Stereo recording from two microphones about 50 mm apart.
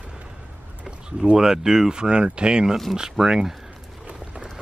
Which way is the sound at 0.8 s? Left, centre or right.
Centre.